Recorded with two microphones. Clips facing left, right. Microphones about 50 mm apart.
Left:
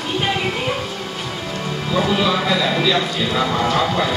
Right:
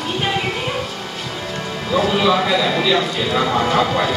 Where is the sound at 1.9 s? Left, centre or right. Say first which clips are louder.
Right 2 dB; centre.